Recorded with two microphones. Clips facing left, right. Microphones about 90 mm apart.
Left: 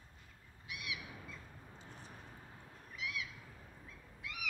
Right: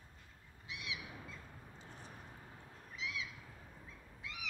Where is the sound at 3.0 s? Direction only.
25° right (ahead or behind).